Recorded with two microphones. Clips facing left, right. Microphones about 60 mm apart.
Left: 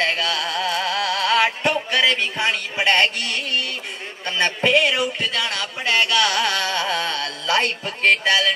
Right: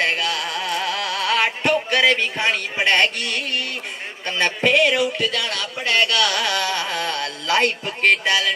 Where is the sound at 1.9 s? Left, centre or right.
Right.